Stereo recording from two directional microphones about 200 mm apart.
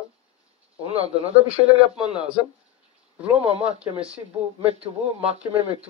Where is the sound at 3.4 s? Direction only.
30° right (ahead or behind).